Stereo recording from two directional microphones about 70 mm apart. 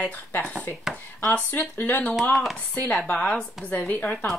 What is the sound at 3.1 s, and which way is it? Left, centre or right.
Speech, left.